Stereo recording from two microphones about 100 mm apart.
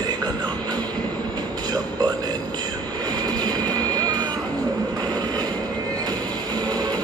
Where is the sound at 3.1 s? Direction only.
45° right (ahead or behind).